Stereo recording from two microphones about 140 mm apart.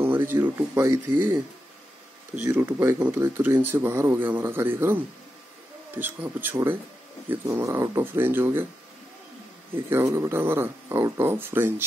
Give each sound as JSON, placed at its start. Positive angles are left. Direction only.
{"t": 0.0, "sound": "speech", "side_deg": -15}
{"t": 2.4, "sound": "speech", "side_deg": -20}
{"t": 9.8, "sound": "speech", "side_deg": -15}